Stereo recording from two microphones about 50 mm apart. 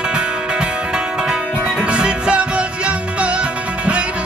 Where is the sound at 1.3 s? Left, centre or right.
Centre.